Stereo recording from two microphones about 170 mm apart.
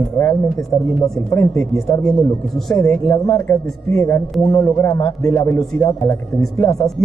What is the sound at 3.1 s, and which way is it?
Speech, 15° left (ahead or behind).